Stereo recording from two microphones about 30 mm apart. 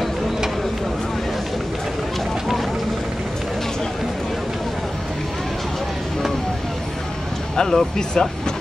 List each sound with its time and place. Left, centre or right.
7.5 s speech: centre